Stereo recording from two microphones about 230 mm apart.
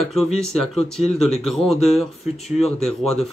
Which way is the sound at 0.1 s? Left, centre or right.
Centre.